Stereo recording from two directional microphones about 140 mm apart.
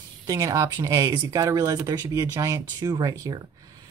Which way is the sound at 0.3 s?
20° right (ahead or behind).